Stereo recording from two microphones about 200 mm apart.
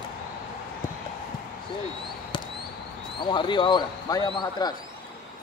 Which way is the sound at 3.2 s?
25° left (ahead or behind).